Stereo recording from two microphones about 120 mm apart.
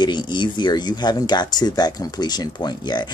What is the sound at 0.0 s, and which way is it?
Speech, 40° left (ahead or behind).